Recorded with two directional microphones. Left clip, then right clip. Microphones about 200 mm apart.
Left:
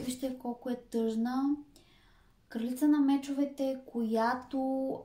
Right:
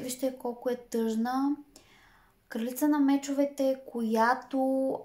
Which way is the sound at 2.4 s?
30° right (ahead or behind).